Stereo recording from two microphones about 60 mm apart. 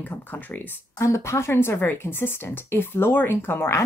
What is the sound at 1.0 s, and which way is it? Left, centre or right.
A woman's voice, left.